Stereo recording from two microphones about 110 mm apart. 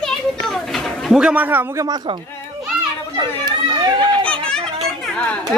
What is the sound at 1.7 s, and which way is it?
Speech, 35° right (ahead or behind).